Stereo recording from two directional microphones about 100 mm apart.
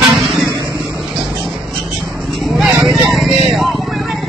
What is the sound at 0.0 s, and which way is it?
Vehicle, centre (ahead or behind).